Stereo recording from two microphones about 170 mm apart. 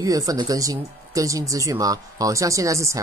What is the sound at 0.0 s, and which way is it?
Speech, 20° right (ahead or behind).